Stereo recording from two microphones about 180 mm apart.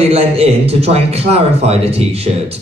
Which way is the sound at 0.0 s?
35° right (ahead or behind).